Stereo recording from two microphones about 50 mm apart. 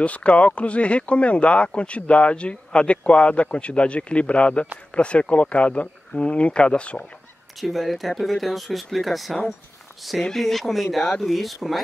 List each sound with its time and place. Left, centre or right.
0.0 s speech: left
7.6 s speech: centre